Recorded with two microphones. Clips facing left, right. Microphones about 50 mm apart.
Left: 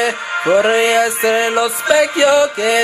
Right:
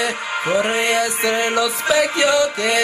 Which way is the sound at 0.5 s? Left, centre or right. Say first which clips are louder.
Left 6 dB; left.